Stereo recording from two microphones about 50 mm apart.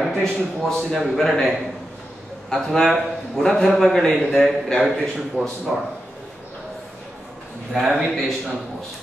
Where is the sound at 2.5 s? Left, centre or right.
Centre.